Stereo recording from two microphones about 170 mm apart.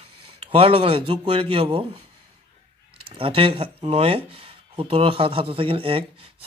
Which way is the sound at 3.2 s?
30° right (ahead or behind).